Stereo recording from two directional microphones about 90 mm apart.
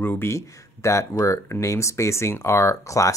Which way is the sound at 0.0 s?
25° left (ahead or behind).